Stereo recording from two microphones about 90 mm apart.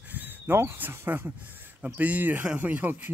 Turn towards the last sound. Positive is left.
turn(degrees=-20)  # may be behind; listen again after turning